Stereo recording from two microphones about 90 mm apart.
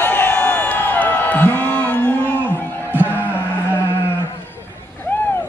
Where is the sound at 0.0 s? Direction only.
20° left (ahead or behind).